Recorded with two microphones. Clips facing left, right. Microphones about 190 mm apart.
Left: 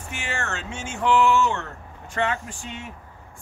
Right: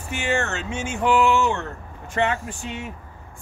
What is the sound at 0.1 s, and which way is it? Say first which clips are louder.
Speech: right 7 dB; 25° right (ahead or behind).